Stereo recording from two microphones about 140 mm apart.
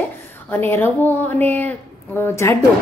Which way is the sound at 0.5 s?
15° left (ahead or behind).